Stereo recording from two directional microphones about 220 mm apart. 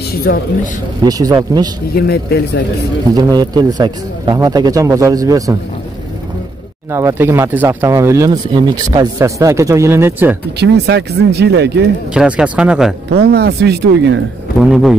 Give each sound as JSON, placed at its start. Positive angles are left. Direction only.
{"t": 0.3, "sound": "a man's voice", "side_deg": 45}
{"t": 1.0, "sound": "speech", "side_deg": -15}
{"t": 2.0, "sound": "a man's voice", "side_deg": 45}
{"t": 3.2, "sound": "speech", "side_deg": -20}
{"t": 6.9, "sound": "speech", "side_deg": -10}
{"t": 10.6, "sound": "speech", "side_deg": -50}
{"t": 12.1, "sound": "speech", "side_deg": -5}
{"t": 13.1, "sound": "speech", "side_deg": -45}
{"t": 14.6, "sound": "speech", "side_deg": 0}